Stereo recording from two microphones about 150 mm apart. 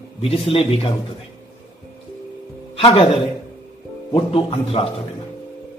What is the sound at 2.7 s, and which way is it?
Speech, 40° left (ahead or behind).